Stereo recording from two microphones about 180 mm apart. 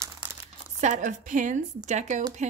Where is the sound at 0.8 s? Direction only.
45° right (ahead or behind).